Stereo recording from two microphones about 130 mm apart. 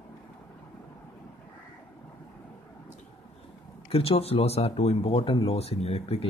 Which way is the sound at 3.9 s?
50° left (ahead or behind).